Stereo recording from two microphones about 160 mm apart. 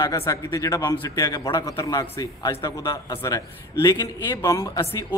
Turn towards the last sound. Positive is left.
turn(degrees=20)  # may be behind; listen again after turning